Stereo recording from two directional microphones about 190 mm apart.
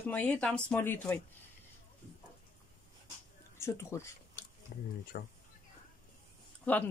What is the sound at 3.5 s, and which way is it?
Speech, 15° left (ahead or behind).